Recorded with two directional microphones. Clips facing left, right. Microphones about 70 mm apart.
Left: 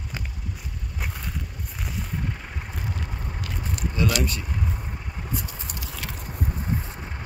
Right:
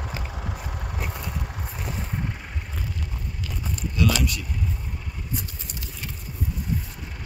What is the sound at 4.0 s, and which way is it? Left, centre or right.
Speech, left.